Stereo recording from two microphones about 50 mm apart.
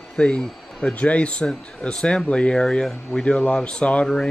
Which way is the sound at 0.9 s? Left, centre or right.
Left.